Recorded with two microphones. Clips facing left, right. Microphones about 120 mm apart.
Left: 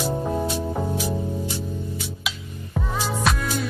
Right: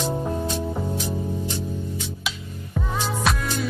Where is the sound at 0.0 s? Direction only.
5° left (ahead or behind).